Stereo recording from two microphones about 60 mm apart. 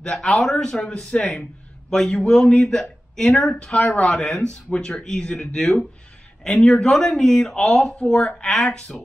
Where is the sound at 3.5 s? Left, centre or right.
Centre.